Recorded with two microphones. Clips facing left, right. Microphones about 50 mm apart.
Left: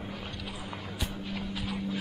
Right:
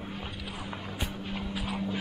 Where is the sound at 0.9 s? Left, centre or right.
Right.